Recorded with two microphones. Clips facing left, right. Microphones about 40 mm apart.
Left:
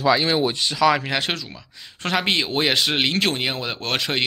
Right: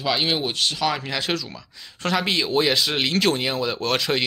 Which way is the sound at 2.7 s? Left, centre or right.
Left.